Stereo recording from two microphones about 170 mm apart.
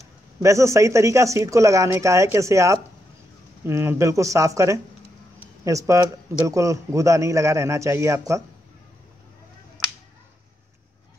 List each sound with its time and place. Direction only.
0.4 s speech: 15° right (ahead or behind)